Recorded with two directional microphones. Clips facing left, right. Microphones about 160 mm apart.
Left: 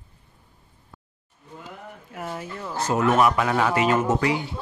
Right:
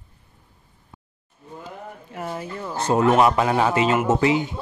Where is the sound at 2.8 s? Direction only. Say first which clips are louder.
Right 3 dB; 30° right (ahead or behind).